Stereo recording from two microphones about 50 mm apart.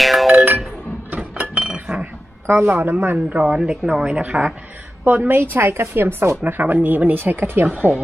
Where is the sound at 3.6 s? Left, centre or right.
Centre.